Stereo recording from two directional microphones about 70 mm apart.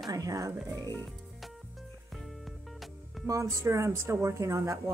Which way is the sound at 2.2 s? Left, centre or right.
Centre.